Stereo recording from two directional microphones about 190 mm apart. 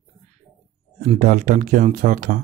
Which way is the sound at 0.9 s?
40° right (ahead or behind).